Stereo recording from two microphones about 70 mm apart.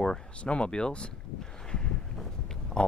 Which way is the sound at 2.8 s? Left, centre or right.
Centre.